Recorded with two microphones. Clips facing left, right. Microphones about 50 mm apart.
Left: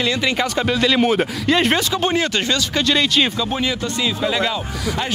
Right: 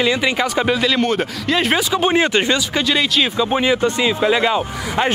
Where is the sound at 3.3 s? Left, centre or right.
Right.